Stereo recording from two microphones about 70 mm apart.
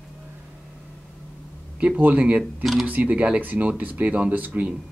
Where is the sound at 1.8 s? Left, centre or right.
Centre.